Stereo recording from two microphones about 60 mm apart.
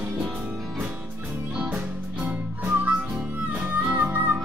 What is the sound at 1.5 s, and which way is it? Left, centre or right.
Music, right.